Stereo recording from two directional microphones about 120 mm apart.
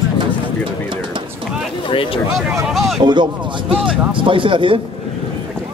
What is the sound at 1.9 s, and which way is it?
Speech, 45° left (ahead or behind).